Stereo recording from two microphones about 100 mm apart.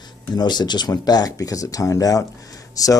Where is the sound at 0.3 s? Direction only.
45° left (ahead or behind).